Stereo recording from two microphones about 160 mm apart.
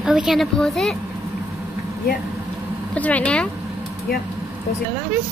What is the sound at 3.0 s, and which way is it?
Speech, 10° left (ahead or behind).